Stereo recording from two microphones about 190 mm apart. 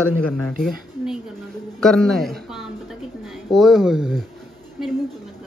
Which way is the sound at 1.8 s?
5° left (ahead or behind).